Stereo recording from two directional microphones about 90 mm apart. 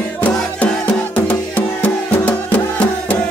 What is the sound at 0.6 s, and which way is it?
Music, 20° left (ahead or behind).